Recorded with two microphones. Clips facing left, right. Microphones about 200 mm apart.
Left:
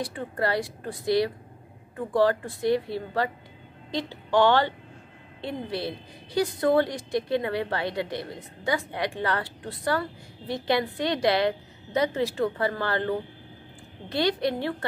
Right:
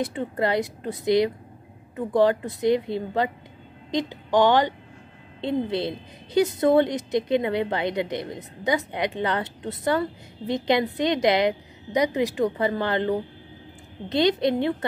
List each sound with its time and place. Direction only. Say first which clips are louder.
0.0 s a woman's voice: right 3 dB; 20° right (ahead or behind)